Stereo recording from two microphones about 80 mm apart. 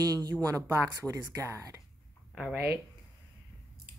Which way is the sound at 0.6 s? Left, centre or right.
Right.